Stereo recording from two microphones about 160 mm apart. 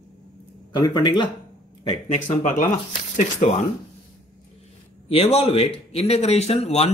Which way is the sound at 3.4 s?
50° left (ahead or behind).